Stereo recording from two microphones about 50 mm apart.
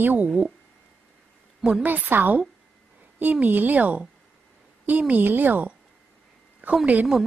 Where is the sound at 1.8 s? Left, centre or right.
Right.